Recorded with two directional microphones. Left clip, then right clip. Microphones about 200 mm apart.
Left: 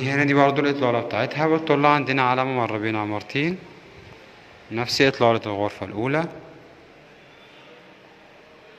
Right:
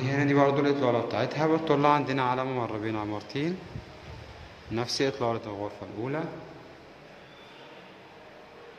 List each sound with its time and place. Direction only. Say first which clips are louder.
0.0 s a man's voice: left 6 dB; 15° left (ahead or behind)
4.7 s speech: left 9 dB; 20° left (ahead or behind)